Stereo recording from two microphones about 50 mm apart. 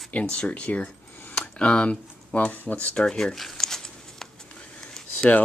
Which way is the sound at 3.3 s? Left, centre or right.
Centre.